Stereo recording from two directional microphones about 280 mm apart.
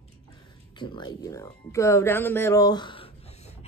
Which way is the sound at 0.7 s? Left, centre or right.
Centre.